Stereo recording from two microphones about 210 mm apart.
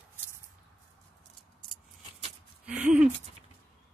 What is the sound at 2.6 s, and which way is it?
Speech, 5° right (ahead or behind).